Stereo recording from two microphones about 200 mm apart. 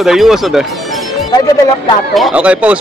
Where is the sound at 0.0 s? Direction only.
Centre (ahead or behind).